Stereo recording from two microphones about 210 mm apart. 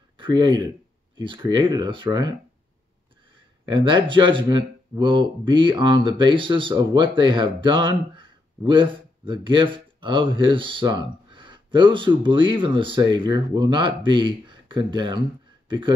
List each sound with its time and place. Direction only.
0.2 s speech: 20° right (ahead or behind)
3.6 s speech: 20° right (ahead or behind)